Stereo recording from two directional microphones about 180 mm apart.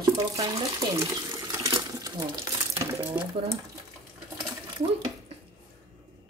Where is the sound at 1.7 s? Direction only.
20° right (ahead or behind).